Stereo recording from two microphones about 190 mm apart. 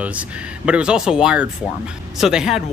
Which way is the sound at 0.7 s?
5° right (ahead or behind).